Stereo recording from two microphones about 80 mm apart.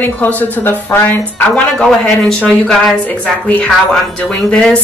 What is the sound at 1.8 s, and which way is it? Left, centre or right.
Speech, centre.